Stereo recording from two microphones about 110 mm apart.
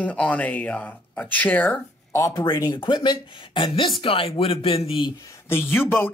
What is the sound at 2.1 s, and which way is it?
Speech, 30° left (ahead or behind).